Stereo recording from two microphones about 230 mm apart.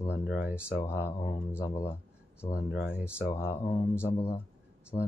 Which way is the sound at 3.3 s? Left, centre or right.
Centre.